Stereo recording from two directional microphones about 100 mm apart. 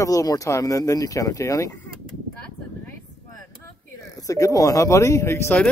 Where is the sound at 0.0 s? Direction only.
35° left (ahead or behind).